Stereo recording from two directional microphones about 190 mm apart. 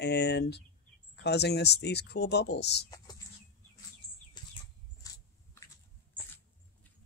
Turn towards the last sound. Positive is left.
turn(degrees=20)  # may be behind; listen again after turning